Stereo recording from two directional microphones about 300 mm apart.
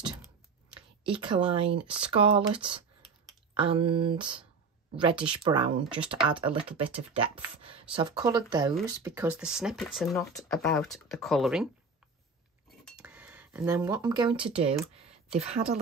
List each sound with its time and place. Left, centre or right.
0.7 s speech: centre
3.5 s a sound: centre
3.8 s speech: right
4.1 s speech: centre
12.8 s a woman's voice: centre